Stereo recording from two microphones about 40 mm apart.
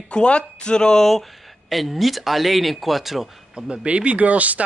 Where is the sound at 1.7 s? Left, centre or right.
Centre.